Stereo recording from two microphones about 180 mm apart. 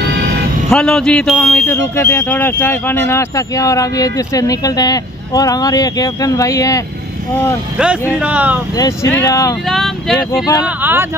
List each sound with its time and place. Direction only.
0.7 s speech: 5° left (ahead or behind); by 6.8 s 20° left (ahead or behind)
7.7 s speech: 5° right (ahead or behind)
8.7 s speech: 20° left (ahead or behind)
9.7 s speech: centre (ahead or behind)
10.4 s speech: 20° left (ahead or behind)
10.8 s speech: 10° right (ahead or behind)